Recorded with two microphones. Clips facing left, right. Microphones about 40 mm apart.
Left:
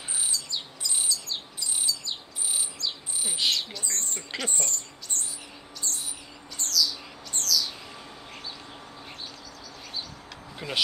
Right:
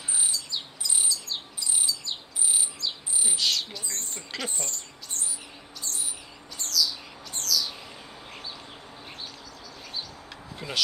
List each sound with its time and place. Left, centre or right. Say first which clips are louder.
0.3 s bird: even; centre
3.3 s bird: left 1 dB; centre
3.7 s bird: left 2 dB; centre
4.4 s speech: left 2 dB; centre
5.9 s owl: left 1 dB; centre
6.6 s bird: even; centre
7.3 s chirp: left 1 dB; centre
10.6 s bird: left 2 dB; centre